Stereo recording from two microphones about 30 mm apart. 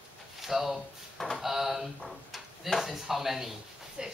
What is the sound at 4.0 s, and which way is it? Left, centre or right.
Speech, right.